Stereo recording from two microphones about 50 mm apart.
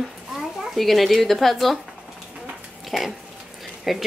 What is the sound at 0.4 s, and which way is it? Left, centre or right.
Speech, centre.